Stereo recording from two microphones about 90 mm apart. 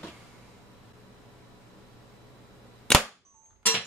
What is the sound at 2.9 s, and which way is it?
Cap gun, 5° left (ahead or behind).